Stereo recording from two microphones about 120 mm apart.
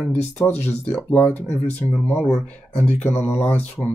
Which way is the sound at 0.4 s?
15° left (ahead or behind).